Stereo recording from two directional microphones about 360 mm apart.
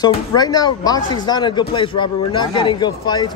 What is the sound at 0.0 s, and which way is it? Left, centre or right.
Speech, centre.